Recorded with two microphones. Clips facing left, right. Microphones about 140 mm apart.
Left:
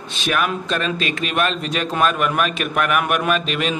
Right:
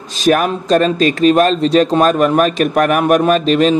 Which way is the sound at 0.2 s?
40° right (ahead or behind).